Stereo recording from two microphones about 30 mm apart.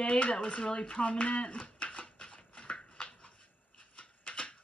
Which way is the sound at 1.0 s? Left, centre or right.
Left.